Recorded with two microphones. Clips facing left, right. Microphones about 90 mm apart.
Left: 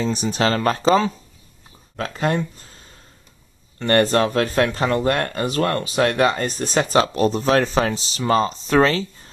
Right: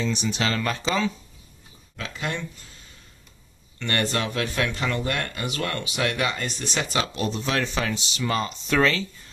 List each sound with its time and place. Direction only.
0.0 s speech: 40° left (ahead or behind)
3.8 s speech: 40° left (ahead or behind)